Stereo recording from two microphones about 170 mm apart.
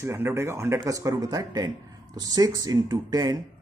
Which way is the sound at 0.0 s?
15° right (ahead or behind).